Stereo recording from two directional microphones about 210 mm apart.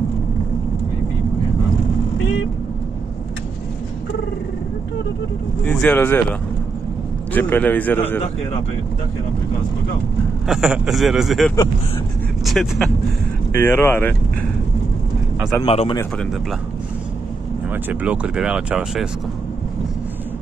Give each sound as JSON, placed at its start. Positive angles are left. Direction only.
{"t": 5.7, "sound": "a man's voice", "side_deg": 10}
{"t": 7.3, "sound": "a man's voice", "side_deg": 10}
{"t": 10.4, "sound": "a man's voice", "side_deg": 0}
{"t": 15.6, "sound": "a man's voice", "side_deg": 25}
{"t": 17.6, "sound": "speech", "side_deg": -5}